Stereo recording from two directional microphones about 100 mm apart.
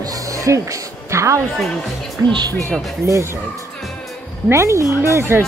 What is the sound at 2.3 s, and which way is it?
Speech, 50° right (ahead or behind).